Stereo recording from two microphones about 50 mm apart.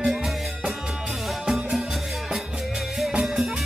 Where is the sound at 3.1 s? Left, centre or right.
Right.